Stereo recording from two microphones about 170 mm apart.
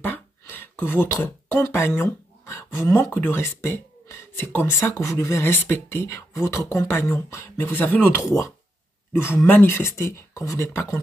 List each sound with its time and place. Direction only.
0.0 s speech: 10° left (ahead or behind)